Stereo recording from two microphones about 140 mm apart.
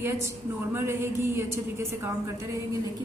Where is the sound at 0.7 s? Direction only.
15° right (ahead or behind).